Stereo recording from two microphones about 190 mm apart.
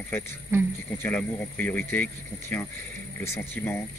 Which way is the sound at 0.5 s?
15° right (ahead or behind).